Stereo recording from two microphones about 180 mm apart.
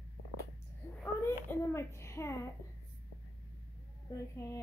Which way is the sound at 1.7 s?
15° left (ahead or behind).